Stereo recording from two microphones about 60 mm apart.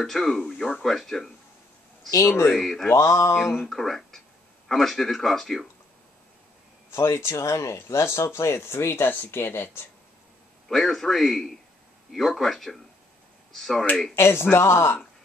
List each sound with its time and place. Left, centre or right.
0.0 s speech: centre
2.0 s speech: left
2.4 s speech: centre
3.0 s speech: left
3.6 s speech: centre
6.9 s speech: left
10.7 s speech: centre
14.1 s speech: left